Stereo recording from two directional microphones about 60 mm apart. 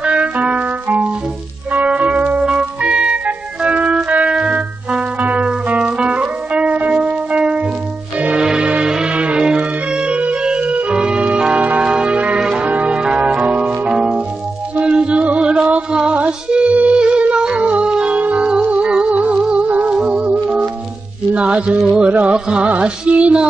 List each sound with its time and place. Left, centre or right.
0.0 s music: right
2.4 s organ: centre
8.2 s music: centre
21.3 s a sound: right
22.1 s music: right